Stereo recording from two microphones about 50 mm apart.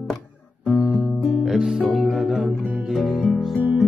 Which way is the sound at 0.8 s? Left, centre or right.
Centre.